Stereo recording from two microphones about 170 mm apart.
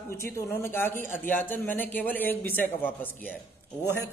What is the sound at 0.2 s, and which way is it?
A man's voice, 15° left (ahead or behind).